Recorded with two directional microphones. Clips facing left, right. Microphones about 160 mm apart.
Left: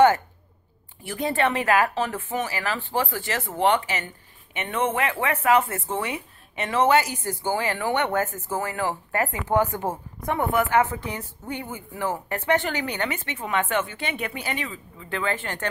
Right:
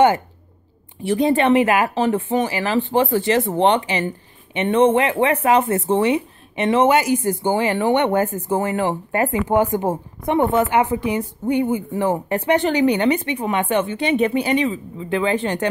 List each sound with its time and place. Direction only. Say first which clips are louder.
1.0 s a woman's voice: right 8 dB; 20° right (ahead or behind)